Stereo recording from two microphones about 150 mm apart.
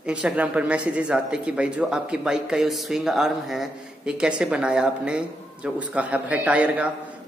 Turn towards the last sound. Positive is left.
turn(degrees=-10)  # may be behind; listen again after turning